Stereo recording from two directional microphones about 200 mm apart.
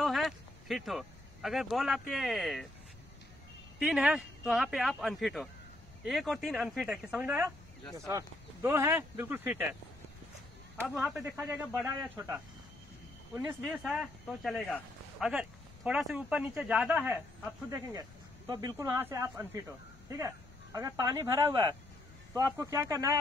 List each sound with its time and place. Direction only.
0.0 s speech: centre (ahead or behind)
3.8 s speech: 5° right (ahead or behind)
10.8 s speech: 5° right (ahead or behind)